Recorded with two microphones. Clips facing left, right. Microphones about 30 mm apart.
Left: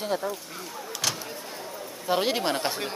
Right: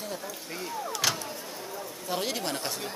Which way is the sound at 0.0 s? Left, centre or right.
Left.